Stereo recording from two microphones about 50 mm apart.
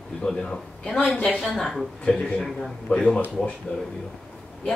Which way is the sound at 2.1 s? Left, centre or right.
Left.